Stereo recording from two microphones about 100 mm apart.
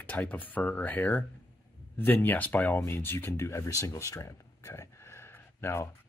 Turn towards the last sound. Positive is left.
turn(degrees=25)  # may be behind; listen again after turning